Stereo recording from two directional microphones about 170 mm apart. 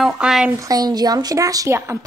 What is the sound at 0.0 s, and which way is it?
Speech, 5° right (ahead or behind).